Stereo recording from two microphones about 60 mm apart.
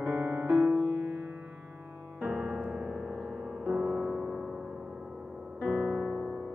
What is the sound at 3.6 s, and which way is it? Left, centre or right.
Music, right.